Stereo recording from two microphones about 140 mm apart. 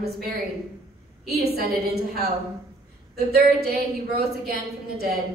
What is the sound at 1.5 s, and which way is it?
Speech, 90° right.